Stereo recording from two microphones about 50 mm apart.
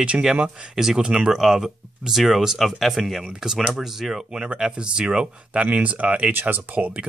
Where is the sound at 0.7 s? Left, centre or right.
Centre.